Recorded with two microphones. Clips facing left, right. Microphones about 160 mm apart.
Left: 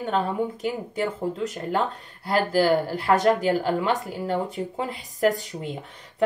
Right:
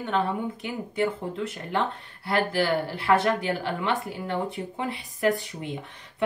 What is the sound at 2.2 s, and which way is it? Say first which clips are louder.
Speech: left 4 dB; 40° left (ahead or behind).